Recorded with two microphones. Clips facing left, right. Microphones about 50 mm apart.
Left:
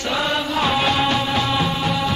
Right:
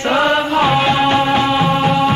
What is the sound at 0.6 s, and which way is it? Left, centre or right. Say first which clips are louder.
Music: right 3 dB; right.